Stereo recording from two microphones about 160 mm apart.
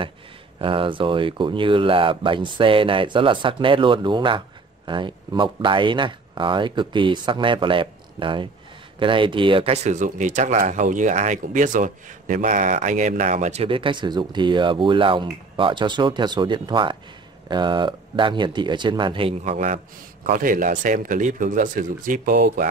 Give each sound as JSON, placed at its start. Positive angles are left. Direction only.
{"t": 0.6, "sound": "speech", "side_deg": -35}
{"t": 20.2, "sound": "speech", "side_deg": -60}